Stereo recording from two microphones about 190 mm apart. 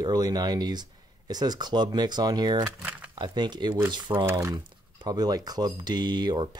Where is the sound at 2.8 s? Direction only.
10° right (ahead or behind).